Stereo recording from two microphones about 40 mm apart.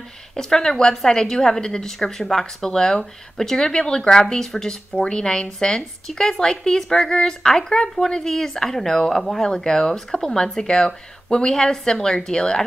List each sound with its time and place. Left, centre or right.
0.4 s speech: centre